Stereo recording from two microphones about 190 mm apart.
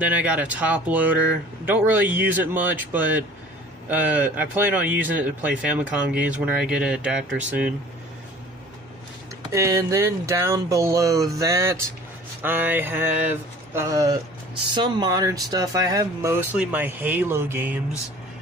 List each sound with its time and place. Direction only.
0.0 s speech: 10° right (ahead or behind)
9.5 s speech: 15° right (ahead or behind)